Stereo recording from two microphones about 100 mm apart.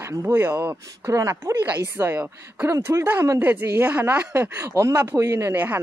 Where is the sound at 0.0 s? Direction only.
25° right (ahead or behind).